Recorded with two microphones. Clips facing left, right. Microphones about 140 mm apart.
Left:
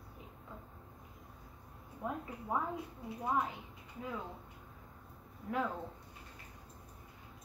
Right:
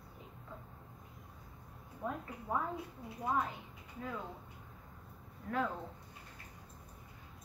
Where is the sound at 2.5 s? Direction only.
15° left (ahead or behind).